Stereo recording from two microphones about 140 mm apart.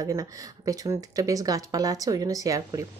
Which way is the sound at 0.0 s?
25° right (ahead or behind).